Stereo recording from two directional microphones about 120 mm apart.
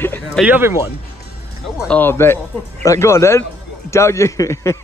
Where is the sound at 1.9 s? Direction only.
15° left (ahead or behind).